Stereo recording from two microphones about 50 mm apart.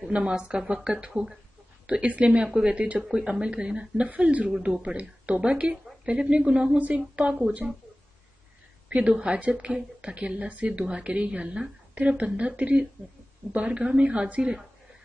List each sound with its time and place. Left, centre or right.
0.1 s a woman's voice: right
8.8 s a woman's voice: right